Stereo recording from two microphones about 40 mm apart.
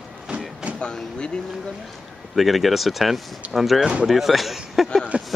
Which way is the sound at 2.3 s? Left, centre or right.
Centre.